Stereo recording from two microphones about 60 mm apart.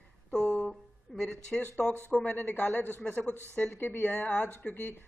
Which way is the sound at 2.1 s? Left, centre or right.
Left.